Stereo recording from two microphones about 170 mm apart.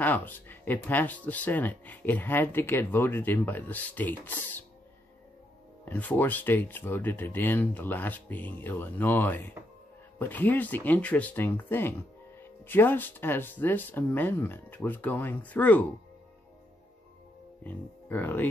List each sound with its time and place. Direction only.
0.0 s speech: 10° left (ahead or behind)
5.9 s speech: 10° left (ahead or behind)
17.6 s speech: 10° left (ahead or behind)